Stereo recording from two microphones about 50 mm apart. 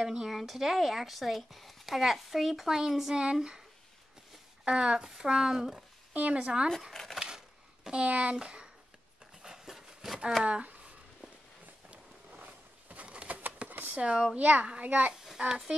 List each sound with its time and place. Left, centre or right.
0.0 s speech: centre
4.6 s a child's voice: centre
6.1 s a child's voice: right
6.9 s speech: centre
7.2 s a sound: centre
7.9 s a child's voice: right
9.4 s a sound: centre
10.4 s a sound: right
13.9 s a child's voice: right
15.2 s a child's voice: centre